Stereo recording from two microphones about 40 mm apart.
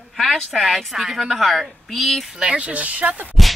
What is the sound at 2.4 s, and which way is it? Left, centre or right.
Speech, right.